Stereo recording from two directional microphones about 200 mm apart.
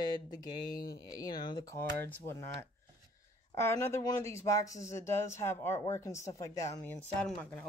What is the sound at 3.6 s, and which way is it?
Speech, 10° left (ahead or behind).